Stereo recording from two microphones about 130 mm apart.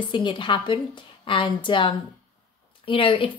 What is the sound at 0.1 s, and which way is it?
A woman's voice, 40° left (ahead or behind).